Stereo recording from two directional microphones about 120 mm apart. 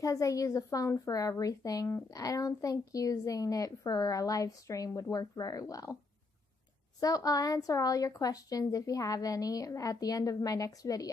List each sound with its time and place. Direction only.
0.0 s a woman's voice: 30° left (ahead or behind)
7.0 s a woman's voice: 30° left (ahead or behind)